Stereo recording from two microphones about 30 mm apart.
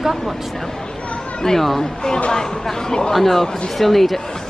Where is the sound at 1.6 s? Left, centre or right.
Centre.